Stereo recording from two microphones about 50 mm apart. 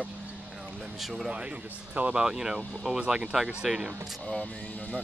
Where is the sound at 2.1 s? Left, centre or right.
Centre.